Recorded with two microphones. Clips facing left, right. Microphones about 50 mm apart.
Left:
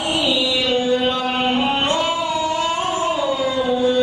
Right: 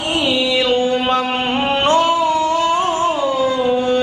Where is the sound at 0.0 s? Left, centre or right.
Right.